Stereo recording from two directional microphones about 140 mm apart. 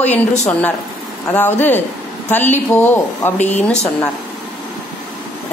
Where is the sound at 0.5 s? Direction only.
10° left (ahead or behind).